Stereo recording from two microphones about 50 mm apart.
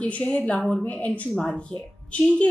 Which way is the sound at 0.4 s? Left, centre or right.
Left.